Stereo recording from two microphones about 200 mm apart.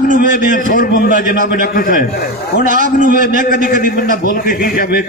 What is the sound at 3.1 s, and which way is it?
A man's voice, 45° left (ahead or behind).